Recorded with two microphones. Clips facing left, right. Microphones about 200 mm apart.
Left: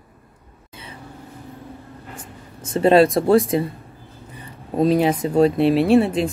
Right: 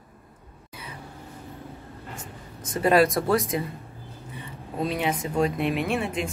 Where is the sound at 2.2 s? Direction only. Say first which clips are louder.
Left 2 dB; 30° left (ahead or behind).